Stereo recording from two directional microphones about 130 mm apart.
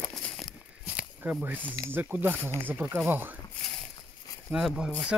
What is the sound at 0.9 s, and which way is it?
Snake, 10° right (ahead or behind).